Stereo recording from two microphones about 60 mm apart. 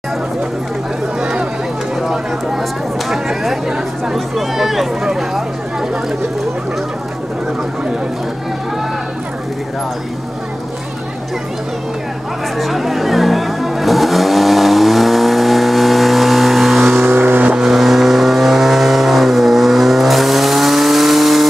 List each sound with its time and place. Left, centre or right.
1.2 s run: centre
2.0 s a sound: centre
12.5 s vehicle: centre
17.0 s vehicle: right
17.6 s vehicle: centre